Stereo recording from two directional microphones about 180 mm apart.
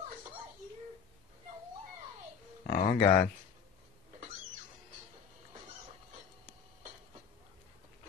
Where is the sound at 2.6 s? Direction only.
45° left (ahead or behind).